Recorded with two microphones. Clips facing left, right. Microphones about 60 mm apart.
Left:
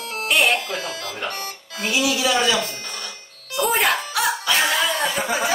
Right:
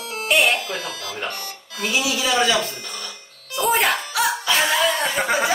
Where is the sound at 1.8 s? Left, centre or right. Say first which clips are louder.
Left 1 dB; left.